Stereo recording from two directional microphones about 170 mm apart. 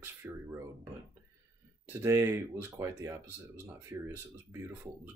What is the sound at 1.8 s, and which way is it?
Speech, 15° right (ahead or behind).